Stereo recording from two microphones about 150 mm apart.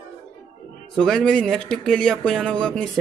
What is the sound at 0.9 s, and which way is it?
Speech, 5° left (ahead or behind).